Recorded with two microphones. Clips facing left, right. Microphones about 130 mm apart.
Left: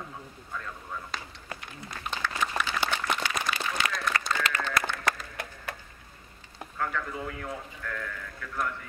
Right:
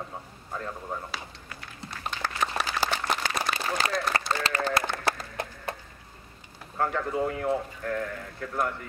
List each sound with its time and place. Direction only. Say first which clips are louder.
0.9 s speech: right 3 dB; 35° right (ahead or behind)
1.8 s applause: right 1 dB; 35° right (ahead or behind)
4.3 s a sound: right 2 dB; 35° right (ahead or behind)
6.8 s speech: right 6 dB; 35° right (ahead or behind)